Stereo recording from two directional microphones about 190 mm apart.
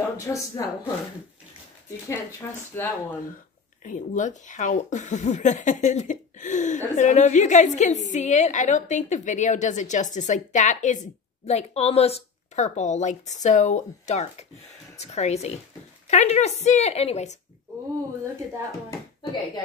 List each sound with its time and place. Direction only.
0.3 s speech: 15° left (ahead or behind)
2.7 s speech: 10° left (ahead or behind)
3.8 s speech: 40° left (ahead or behind)